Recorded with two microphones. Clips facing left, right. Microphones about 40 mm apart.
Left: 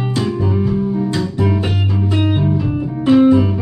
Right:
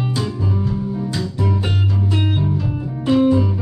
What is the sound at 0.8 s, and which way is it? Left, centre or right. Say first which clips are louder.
Music: left 5 dB; left.